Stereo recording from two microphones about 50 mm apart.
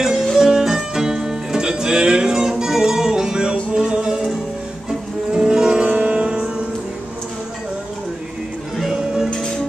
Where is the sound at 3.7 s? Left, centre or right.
Centre.